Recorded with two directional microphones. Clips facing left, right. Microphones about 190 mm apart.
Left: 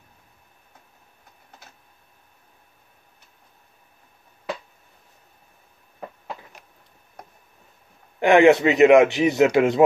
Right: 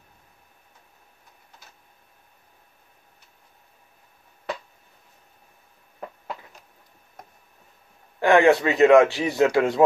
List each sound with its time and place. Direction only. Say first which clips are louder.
8.2 s a man's voice: left 3 dB; 20° left (ahead or behind)